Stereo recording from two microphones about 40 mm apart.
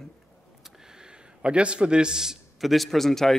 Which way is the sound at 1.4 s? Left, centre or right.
Right.